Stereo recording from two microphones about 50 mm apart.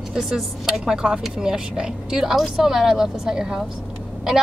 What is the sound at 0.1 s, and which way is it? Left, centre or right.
Speech, centre.